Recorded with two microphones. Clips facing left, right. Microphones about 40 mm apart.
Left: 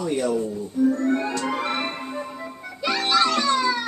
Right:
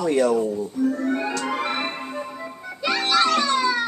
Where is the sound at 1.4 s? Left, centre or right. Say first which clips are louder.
Even; centre.